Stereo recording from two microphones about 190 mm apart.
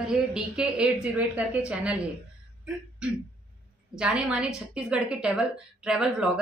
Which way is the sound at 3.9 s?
5° right (ahead or behind).